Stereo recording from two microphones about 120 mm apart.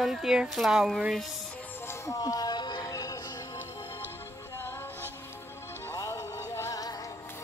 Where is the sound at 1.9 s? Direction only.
30° left (ahead or behind).